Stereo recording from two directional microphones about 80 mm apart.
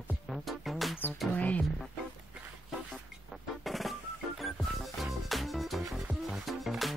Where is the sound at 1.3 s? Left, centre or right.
Centre.